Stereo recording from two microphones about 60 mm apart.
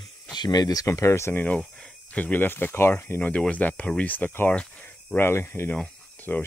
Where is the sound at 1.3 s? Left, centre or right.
Left.